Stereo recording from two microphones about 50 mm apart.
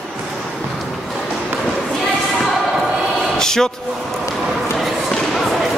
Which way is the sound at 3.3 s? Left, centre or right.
Centre.